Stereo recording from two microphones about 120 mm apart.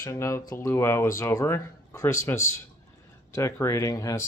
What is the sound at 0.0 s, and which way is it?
Speech, 25° left (ahead or behind).